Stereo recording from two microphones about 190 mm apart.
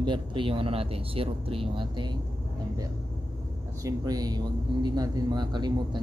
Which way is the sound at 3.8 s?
20° right (ahead or behind).